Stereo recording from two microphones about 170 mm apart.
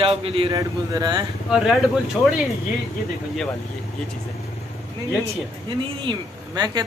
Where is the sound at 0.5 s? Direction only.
20° right (ahead or behind).